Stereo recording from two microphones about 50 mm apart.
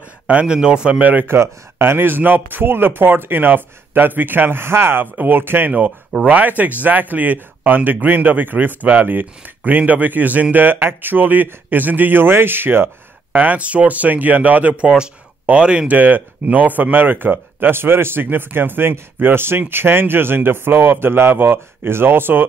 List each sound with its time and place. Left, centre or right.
0.3 s speech: right
1.2 s speech: right
5.0 s speech: right
6.2 s speech: right
15.9 s speech: right